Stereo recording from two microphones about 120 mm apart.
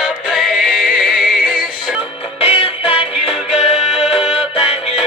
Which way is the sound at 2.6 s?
50° left (ahead or behind).